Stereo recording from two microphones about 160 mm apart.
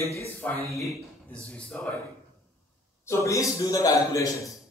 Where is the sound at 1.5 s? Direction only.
5° left (ahead or behind).